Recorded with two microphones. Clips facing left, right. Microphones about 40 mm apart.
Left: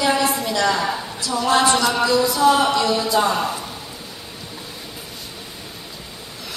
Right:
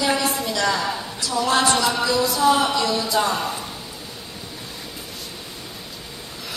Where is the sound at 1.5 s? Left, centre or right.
Centre.